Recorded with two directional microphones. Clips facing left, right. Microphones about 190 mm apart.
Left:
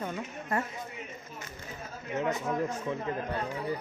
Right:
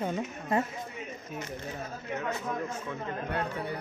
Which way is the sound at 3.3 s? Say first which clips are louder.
Right 1 dB; 65° right (ahead or behind).